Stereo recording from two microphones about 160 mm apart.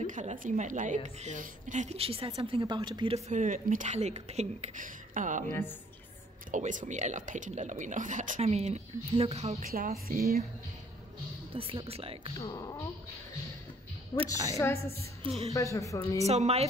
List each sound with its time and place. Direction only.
0.0 s a woman's voice: 50° right (ahead or behind); by 3.2 s 30° right (ahead or behind)
3.3 s a woman's voice: 50° right (ahead or behind)
9.6 s speech: 65° right (ahead or behind)
11.5 s speech: 35° right (ahead or behind)
12.4 s speech: 25° left (ahead or behind)
14.1 s speech: 25° left (ahead or behind)
15.5 s speech: 20° left (ahead or behind)
16.3 s speech: 40° right (ahead or behind)